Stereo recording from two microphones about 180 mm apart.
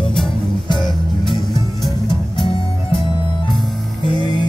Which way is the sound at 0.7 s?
25° left (ahead or behind).